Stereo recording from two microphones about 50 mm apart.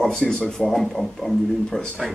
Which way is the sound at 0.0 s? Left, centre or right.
Centre.